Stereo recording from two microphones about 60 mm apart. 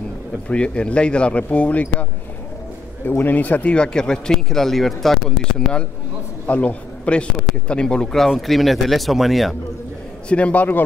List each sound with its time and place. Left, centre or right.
0.5 s speech: centre
3.1 s speech: left; by 5.2 s centre
6.4 s speech: left
8.3 s speech: centre
10.2 s speech: left